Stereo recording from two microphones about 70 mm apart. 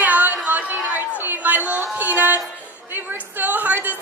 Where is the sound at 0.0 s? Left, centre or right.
Right.